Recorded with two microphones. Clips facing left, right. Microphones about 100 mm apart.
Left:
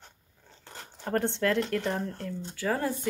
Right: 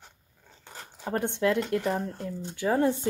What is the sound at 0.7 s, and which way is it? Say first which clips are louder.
Speech: even; 5° right (ahead or behind).